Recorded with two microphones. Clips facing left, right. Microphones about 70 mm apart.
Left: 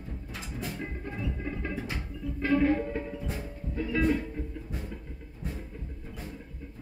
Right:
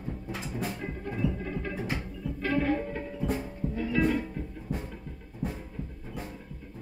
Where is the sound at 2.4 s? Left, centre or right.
Centre.